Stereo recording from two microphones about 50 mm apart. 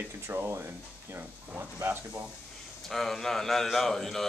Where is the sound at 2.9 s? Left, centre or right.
Centre.